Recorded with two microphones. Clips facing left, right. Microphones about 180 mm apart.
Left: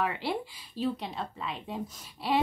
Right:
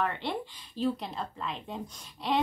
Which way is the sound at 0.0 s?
5° left (ahead or behind).